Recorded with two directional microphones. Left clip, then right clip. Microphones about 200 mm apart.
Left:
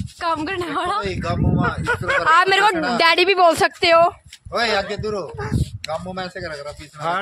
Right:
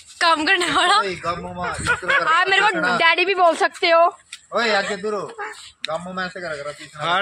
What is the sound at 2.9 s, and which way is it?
Speech, 50° left (ahead or behind).